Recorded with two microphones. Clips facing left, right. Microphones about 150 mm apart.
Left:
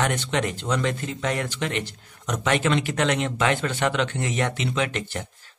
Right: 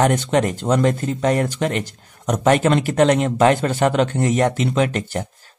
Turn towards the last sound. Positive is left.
turn(degrees=-40)  # may be behind; listen again after turning